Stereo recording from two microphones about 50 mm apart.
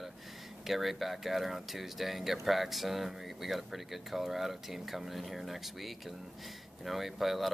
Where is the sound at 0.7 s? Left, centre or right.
Centre.